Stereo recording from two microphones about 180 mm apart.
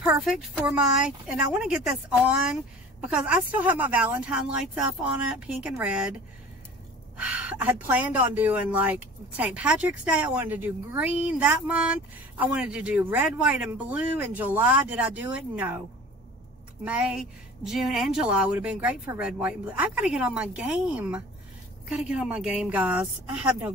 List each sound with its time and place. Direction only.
0.0 s a woman's voice: centre (ahead or behind)
7.2 s speech: 5° right (ahead or behind)
16.8 s a woman's voice: 5° right (ahead or behind)